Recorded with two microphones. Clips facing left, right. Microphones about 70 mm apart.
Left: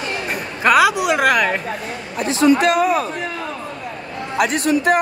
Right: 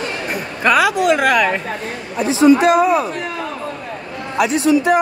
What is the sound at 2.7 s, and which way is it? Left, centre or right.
Speech, right.